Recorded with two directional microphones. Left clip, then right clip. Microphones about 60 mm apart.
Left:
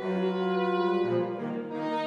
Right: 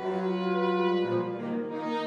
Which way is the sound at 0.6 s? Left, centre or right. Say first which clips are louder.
Right 1 dB; centre.